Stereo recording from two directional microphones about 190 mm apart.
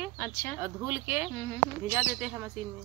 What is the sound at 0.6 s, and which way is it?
Speech, 10° right (ahead or behind).